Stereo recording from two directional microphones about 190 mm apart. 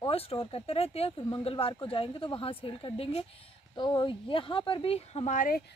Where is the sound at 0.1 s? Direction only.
30° left (ahead or behind).